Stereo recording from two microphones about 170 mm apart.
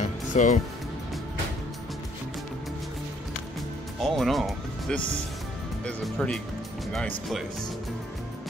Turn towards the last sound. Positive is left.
turn(degrees=5)  # may be behind; listen again after turning